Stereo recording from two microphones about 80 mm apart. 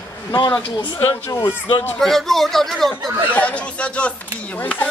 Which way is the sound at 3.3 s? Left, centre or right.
Centre.